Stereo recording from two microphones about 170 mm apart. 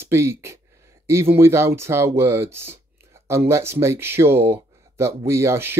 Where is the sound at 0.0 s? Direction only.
15° right (ahead or behind).